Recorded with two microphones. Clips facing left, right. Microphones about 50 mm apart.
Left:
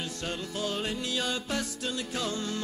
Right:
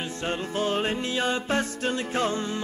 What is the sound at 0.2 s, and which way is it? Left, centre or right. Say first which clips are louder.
Music: right 7 dB; right.